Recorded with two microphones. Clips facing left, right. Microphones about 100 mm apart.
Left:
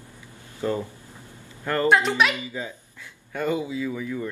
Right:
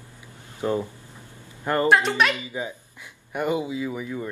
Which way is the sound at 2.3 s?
20° right (ahead or behind).